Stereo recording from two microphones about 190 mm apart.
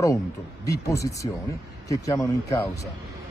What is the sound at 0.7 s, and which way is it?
Speech, 15° left (ahead or behind).